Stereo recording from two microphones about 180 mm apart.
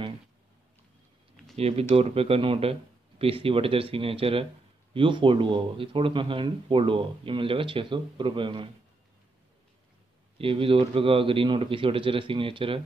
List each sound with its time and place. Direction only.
1.6 s speech: 35° right (ahead or behind)
10.3 s speech: 30° right (ahead or behind)